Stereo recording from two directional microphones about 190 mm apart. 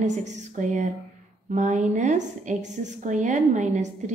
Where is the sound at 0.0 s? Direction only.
40° right (ahead or behind).